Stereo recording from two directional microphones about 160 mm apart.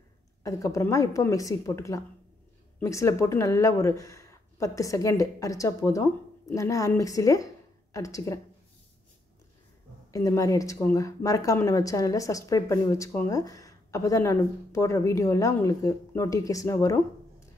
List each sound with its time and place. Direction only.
0.4 s speech: 20° left (ahead or behind)
10.1 s speech: 20° left (ahead or behind)